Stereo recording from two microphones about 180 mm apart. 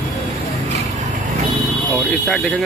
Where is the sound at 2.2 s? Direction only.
Centre (ahead or behind).